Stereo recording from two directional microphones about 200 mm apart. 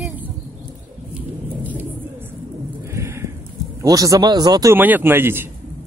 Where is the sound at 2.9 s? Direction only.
15° right (ahead or behind).